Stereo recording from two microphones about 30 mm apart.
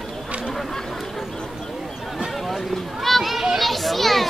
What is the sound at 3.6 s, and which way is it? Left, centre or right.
Children playing, centre.